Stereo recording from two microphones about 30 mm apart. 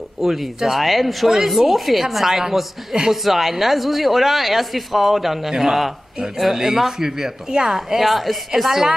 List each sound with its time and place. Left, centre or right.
0.2 s a woman's voice: centre
3.3 s speech: centre
6.1 s speech: right
6.5 s a woman's voice: centre
8.0 s a woman's voice: centre